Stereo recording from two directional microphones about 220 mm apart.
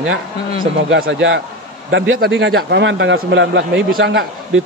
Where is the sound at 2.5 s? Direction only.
55° right (ahead or behind).